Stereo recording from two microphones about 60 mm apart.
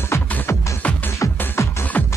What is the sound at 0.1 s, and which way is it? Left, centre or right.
Music, left.